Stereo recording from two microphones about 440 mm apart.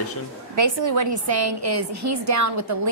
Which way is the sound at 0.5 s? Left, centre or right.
Right.